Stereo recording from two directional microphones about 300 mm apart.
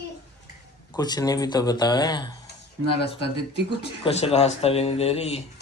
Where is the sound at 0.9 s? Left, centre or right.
Centre.